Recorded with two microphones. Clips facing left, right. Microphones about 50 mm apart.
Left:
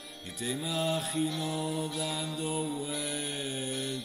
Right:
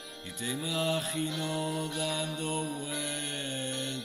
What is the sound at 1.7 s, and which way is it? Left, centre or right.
Mantra, right.